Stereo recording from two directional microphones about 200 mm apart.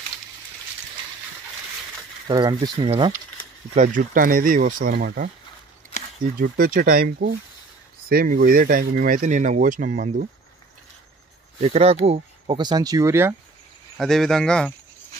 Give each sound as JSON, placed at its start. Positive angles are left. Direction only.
{"t": 2.2, "sound": "speech", "side_deg": -20}
{"t": 3.7, "sound": "speech", "side_deg": -40}
{"t": 6.4, "sound": "speech", "side_deg": -45}
{"t": 11.6, "sound": "speech", "side_deg": -30}
{"t": 13.9, "sound": "speech", "side_deg": 0}